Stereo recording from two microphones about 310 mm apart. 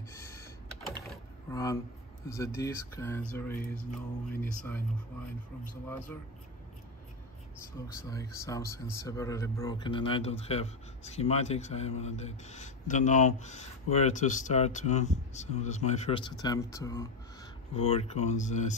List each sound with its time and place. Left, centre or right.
0.1 s computer keyboard: centre
1.5 s speech: centre
7.9 s speech: centre